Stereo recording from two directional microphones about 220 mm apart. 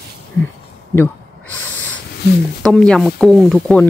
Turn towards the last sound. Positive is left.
turn(degrees=0)  # may be behind; listen again after turning